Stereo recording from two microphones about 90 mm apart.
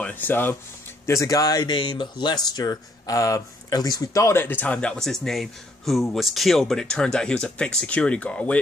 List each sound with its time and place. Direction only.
0.0 s speech: 20° left (ahead or behind)
1.0 s speech: 35° left (ahead or behind); by 8.5 s 15° left (ahead or behind)